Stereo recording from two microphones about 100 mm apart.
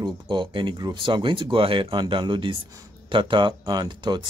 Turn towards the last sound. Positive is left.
turn(degrees=-50)  # may be behind; listen again after turning